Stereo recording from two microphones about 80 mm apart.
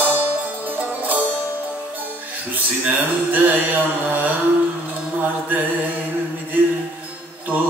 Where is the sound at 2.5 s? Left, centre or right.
Right.